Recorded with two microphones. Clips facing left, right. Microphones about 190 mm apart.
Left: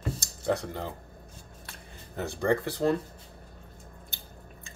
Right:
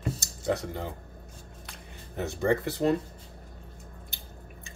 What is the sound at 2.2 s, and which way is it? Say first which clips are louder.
Speech: even; 20° right (ahead or behind).